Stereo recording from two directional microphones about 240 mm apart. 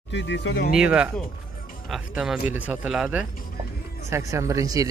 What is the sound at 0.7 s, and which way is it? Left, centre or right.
Speech, centre.